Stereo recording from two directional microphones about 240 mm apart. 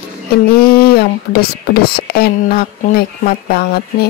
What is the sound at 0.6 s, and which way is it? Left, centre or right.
Speech, left.